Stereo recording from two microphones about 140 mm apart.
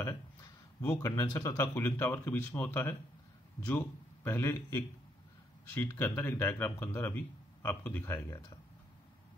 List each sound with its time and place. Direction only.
0.7 s a man's voice: 20° left (ahead or behind)